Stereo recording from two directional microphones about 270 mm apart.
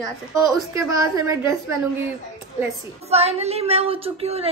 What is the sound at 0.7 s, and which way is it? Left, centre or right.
Speech, centre.